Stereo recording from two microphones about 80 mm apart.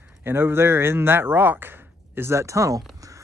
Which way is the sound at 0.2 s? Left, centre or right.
Right.